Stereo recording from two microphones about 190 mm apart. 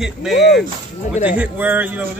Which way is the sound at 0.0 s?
Centre (ahead or behind).